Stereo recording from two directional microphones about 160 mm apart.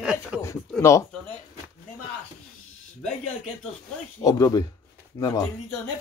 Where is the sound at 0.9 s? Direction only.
15° left (ahead or behind).